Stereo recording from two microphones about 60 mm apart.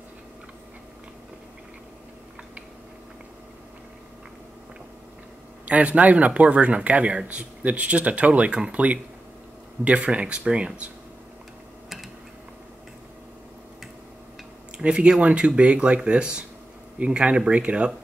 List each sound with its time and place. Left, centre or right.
5.7 s speech: right
14.8 s speech: centre